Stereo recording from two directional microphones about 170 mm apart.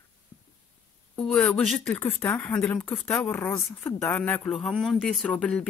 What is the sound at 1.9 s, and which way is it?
Speech, 10° left (ahead or behind).